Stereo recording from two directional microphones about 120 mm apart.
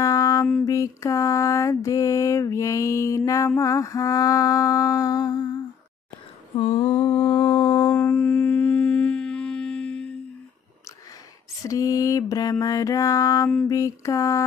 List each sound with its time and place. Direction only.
0.0 s music: 30° left (ahead or behind)
0.7 s mantra: 30° left (ahead or behind)
6.6 s humming: 60° left (ahead or behind)
6.9 s mantra: 35° left (ahead or behind)
7.9 s humming: 15° left (ahead or behind)
11.6 s mantra: 30° left (ahead or behind)